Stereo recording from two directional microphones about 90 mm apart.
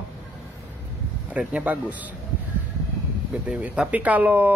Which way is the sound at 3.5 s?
15° right (ahead or behind).